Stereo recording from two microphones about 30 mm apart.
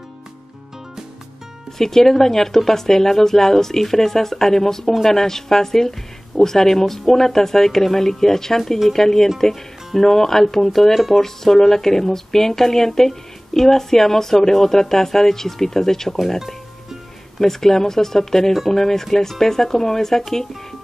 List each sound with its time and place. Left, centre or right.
1.8 s speech: centre
16.3 s music: centre
17.4 s speech: centre